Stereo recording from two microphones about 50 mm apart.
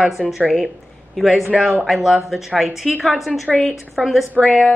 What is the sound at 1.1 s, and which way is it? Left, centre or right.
Speech, centre.